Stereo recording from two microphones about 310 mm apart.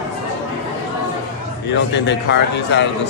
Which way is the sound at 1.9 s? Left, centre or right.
Left.